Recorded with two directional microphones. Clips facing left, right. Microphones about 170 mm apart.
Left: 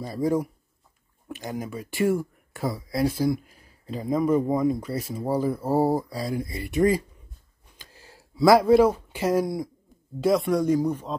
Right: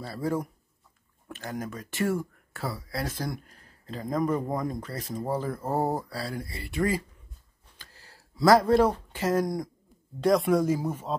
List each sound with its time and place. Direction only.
0.0 s speech: 15° left (ahead or behind)
7.8 s a sound: 20° left (ahead or behind)
8.5 s speech: 10° left (ahead or behind)